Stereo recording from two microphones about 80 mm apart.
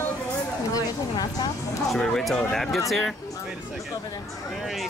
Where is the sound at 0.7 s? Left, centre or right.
Left.